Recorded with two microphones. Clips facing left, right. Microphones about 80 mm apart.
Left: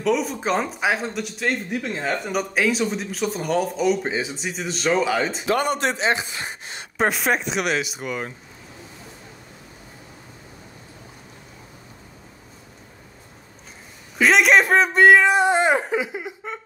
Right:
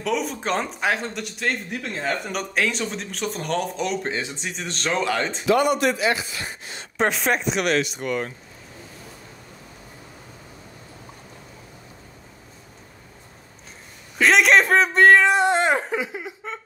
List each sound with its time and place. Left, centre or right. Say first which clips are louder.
0.0 s speech: left 3 dB; centre
5.5 s a man's voice: right 4 dB; left
7.0 s speech: left 1 dB; centre
14.1 s speech: even; centre